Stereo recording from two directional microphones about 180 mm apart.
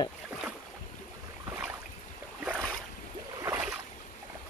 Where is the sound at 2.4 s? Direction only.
5° left (ahead or behind).